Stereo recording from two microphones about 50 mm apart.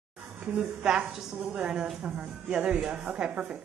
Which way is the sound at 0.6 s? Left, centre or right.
Centre.